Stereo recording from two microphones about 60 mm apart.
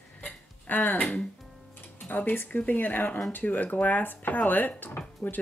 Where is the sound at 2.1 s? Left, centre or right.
Left.